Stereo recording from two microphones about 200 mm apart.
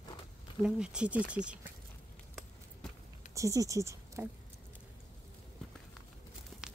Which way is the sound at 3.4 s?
15° right (ahead or behind).